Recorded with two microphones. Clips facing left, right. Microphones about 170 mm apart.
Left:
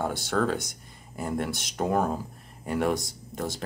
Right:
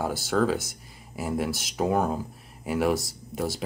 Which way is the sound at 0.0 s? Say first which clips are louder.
Right 2 dB; 5° right (ahead or behind).